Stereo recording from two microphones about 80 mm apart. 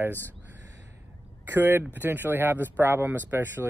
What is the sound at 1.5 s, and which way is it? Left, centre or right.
Speech, right.